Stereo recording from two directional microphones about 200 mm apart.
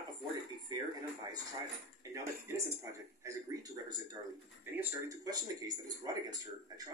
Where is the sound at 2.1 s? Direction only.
15° right (ahead or behind).